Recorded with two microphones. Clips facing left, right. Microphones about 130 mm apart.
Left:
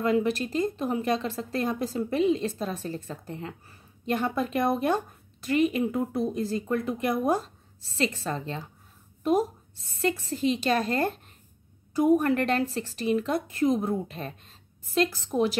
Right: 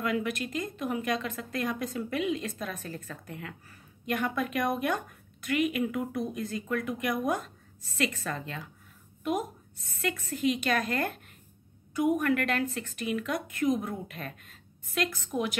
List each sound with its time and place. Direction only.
0.0 s a woman's voice: 30° left (ahead or behind)